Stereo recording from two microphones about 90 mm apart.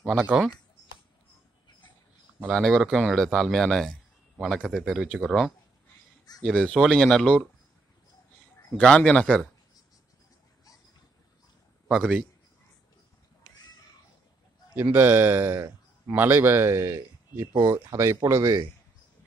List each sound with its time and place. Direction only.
0.2 s speech: 15° right (ahead or behind)
2.4 s speech: 5° left (ahead or behind)
8.8 s speech: 10° left (ahead or behind)
11.9 s speech: 5° right (ahead or behind)
14.8 s a man's voice: 20° right (ahead or behind); by 18.6 s 40° right (ahead or behind)